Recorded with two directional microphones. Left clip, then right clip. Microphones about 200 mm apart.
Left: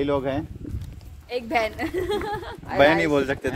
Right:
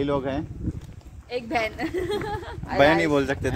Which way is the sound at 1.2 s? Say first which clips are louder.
Left 2 dB; 40° left (ahead or behind).